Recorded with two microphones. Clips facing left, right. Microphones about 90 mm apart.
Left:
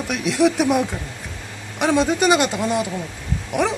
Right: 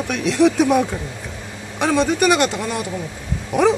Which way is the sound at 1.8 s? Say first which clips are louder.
Right 1 dB; 15° left (ahead or behind).